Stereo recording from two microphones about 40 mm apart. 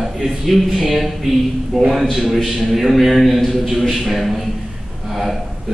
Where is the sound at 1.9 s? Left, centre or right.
Centre.